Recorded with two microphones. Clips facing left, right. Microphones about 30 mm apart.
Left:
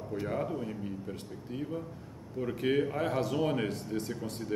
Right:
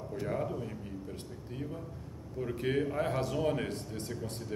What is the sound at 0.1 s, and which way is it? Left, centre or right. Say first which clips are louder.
Speech: left 2 dB; centre.